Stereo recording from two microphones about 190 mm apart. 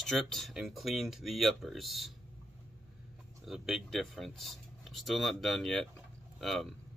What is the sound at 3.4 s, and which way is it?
Speech, centre (ahead or behind).